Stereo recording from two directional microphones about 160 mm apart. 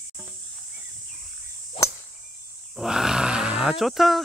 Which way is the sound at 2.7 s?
5° right (ahead or behind).